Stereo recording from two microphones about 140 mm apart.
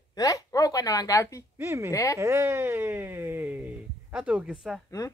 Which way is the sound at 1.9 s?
25° left (ahead or behind).